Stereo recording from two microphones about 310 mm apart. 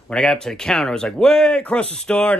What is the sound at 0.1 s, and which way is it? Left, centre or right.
Speech, centre.